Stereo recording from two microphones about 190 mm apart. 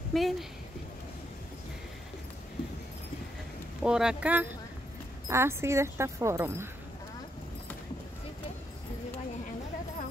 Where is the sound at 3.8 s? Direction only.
5° right (ahead or behind).